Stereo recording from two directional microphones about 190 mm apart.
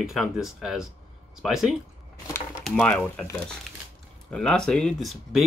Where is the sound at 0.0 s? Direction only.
Centre (ahead or behind).